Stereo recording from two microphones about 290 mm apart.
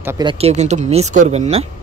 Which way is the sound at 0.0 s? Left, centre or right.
Centre.